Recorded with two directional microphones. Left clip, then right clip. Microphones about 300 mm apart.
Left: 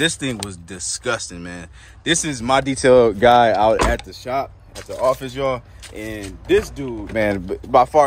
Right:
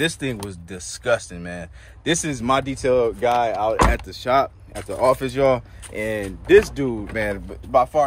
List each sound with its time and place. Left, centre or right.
0.0 s speech: centre
2.6 s speech: left
3.9 s speech: centre
7.2 s speech: left